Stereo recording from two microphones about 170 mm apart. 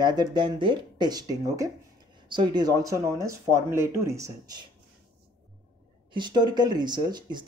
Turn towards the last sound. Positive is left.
turn(degrees=-25)  # may be behind; listen again after turning